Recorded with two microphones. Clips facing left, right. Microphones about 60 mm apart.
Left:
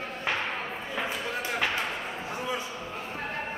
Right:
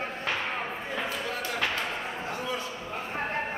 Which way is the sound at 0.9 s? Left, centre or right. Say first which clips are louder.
Left 1 dB; centre.